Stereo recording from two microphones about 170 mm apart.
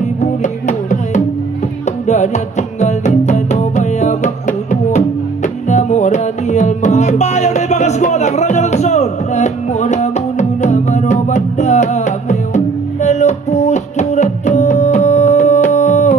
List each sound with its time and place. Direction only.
0.0 s music: 45° left (ahead or behind)